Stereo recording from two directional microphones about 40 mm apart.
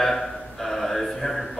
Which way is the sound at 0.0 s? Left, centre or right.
Centre.